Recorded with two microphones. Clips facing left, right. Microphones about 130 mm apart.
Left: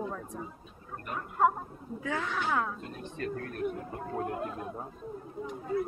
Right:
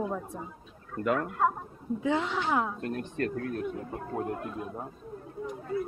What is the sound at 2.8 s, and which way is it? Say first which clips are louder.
Speech: right 8 dB; 65° right (ahead or behind).